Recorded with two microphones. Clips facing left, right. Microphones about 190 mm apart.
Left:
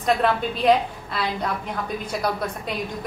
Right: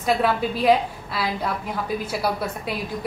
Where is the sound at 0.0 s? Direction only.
5° right (ahead or behind).